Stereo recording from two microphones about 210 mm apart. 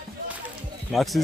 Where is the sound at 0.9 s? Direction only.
Centre (ahead or behind).